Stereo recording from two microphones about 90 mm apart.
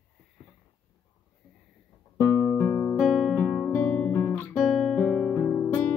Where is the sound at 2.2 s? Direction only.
25° left (ahead or behind).